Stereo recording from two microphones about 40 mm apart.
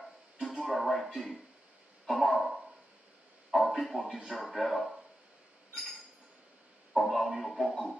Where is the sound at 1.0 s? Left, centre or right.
Centre.